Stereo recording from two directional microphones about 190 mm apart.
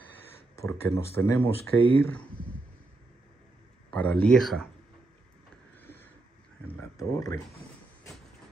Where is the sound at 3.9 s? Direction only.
5° left (ahead or behind).